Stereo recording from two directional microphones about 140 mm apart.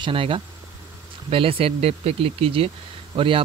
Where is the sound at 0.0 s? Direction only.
40° right (ahead or behind).